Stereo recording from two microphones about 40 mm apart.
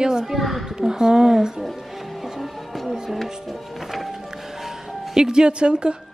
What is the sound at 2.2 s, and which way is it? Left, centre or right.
Music, centre.